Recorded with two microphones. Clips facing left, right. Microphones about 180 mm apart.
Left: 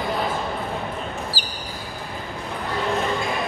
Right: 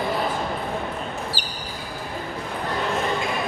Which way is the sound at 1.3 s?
60° right (ahead or behind).